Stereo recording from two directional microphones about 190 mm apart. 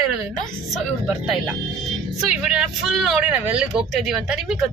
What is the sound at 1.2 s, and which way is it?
Speech, 5° right (ahead or behind).